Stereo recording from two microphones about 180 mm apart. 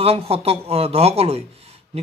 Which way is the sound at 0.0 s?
35° right (ahead or behind).